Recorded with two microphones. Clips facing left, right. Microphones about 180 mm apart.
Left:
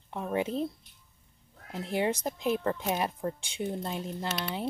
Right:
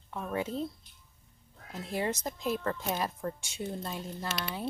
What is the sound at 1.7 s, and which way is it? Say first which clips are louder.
Speech: left 4 dB; 20° left (ahead or behind).